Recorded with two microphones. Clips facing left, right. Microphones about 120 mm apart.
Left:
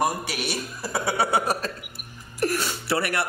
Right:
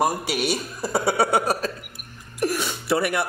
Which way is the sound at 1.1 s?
Centre (ahead or behind).